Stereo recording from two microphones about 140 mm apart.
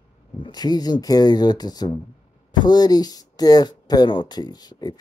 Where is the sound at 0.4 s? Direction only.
30° left (ahead or behind).